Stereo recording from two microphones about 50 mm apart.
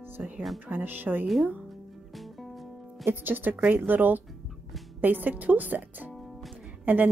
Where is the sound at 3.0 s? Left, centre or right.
Right.